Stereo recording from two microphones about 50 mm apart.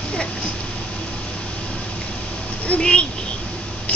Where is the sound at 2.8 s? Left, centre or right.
Centre.